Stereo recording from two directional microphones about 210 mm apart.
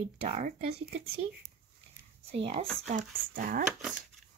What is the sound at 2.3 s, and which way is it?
Speech, 25° right (ahead or behind).